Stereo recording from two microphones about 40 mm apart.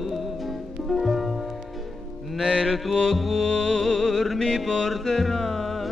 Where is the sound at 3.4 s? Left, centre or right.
Centre.